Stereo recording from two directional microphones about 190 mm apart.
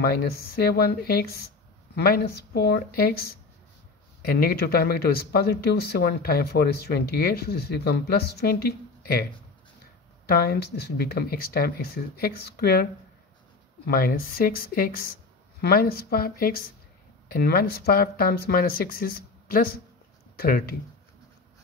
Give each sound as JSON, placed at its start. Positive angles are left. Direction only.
{"t": 0.0, "sound": "speech", "side_deg": 55}
{"t": 13.8, "sound": "speech", "side_deg": 50}